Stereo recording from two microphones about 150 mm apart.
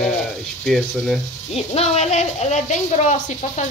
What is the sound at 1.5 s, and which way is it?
Speech, 45° left (ahead or behind).